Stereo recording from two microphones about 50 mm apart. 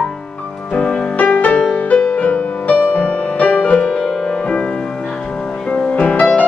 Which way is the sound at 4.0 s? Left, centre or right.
Centre.